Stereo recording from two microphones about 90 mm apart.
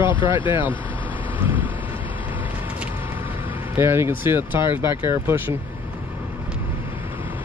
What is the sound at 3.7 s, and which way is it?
Speech, 25° right (ahead or behind).